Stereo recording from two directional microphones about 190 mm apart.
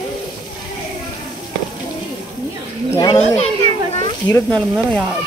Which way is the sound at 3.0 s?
20° left (ahead or behind).